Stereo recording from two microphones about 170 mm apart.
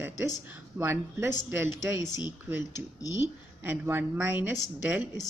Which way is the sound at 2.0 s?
25° left (ahead or behind).